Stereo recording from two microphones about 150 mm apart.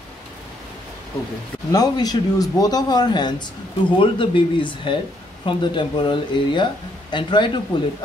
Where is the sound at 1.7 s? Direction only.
25° left (ahead or behind).